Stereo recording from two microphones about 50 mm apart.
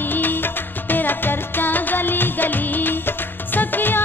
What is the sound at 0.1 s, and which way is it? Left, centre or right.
Music, left.